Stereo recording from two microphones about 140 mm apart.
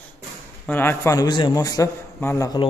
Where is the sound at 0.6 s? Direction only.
15° left (ahead or behind).